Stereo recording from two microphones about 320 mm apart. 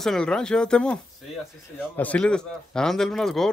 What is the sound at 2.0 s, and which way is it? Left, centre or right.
Speech, centre.